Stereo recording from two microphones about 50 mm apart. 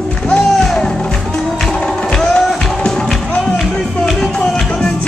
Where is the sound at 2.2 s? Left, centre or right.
Centre.